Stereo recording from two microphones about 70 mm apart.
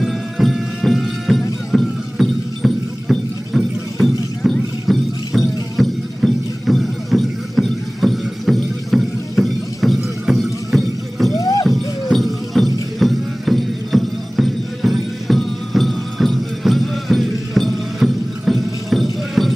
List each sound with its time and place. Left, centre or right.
0.0 s music: centre
11.3 s horse: left
11.6 s music: centre